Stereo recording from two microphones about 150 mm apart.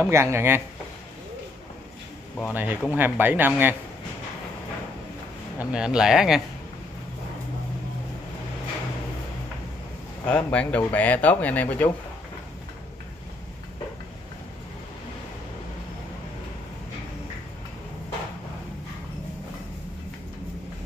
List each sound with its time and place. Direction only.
0.0 s speech: 15° right (ahead or behind)
2.5 s speech: 10° right (ahead or behind)
5.6 s speech: 5° right (ahead or behind)
10.2 s speech: 10° left (ahead or behind)